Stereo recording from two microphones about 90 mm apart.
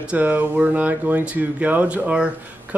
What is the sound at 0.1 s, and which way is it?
Speech, 15° right (ahead or behind).